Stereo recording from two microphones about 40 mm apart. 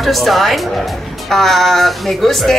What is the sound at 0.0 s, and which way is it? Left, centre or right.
Speech, centre.